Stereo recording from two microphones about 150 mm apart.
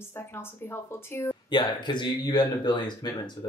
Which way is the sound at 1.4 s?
30° left (ahead or behind).